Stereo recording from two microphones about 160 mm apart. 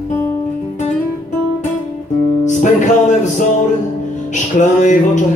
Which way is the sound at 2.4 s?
50° left (ahead or behind).